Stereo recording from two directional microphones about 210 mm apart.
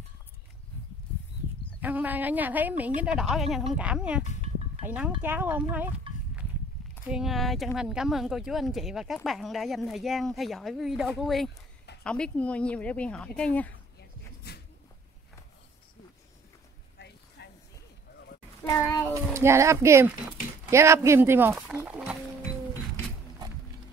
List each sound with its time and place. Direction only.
1.8 s speech: 10° right (ahead or behind)
7.1 s speech: centre (ahead or behind)
14.5 s a sound: 50° left (ahead or behind)
17.4 s a sound: 50° left (ahead or behind)
18.7 s child singing: 15° left (ahead or behind)
19.1 s speech: 15° right (ahead or behind)